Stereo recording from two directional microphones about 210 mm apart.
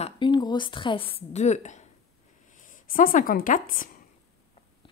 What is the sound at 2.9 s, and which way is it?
Speech, 40° left (ahead or behind).